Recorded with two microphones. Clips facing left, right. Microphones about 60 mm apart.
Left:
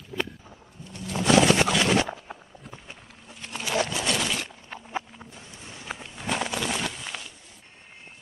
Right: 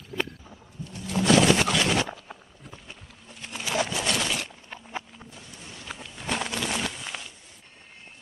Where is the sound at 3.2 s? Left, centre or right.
Centre.